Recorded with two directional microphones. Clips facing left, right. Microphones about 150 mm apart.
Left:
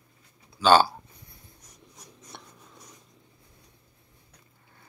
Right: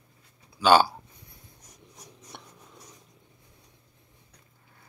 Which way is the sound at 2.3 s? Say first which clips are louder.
Even; 15° right (ahead or behind).